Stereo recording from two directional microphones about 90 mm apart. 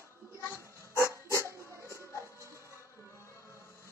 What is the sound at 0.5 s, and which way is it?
Dog, 30° right (ahead or behind).